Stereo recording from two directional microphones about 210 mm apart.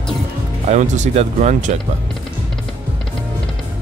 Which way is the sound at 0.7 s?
35° right (ahead or behind).